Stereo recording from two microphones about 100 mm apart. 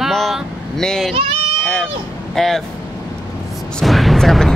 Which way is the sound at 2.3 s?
5° left (ahead or behind).